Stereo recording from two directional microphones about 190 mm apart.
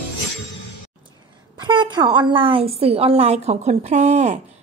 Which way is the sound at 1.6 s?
25° right (ahead or behind).